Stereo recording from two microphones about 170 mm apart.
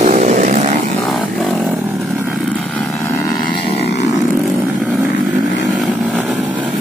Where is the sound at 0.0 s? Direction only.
45° right (ahead or behind).